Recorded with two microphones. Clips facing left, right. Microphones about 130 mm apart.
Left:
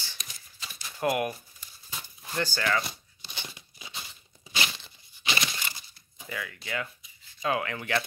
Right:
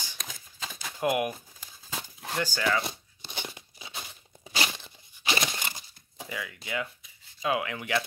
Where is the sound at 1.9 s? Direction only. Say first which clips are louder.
Right 5 dB; 75° right (ahead or behind).